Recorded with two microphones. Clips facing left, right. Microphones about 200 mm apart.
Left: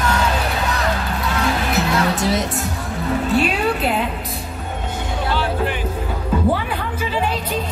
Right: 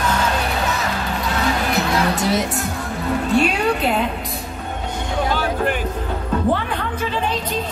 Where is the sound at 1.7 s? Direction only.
Centre (ahead or behind).